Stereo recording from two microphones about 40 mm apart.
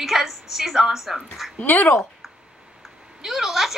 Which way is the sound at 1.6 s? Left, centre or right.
Left.